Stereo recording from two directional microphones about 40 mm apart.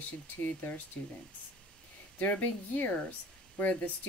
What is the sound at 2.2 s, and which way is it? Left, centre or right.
Speech, left.